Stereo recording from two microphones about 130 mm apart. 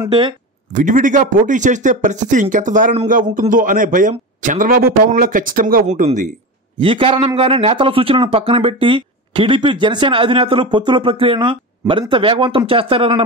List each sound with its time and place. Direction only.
0.7 s speech: 75° right (ahead or behind)
3.1 s a man's voice: 90° right
6.8 s a man's voice: 45° right (ahead or behind)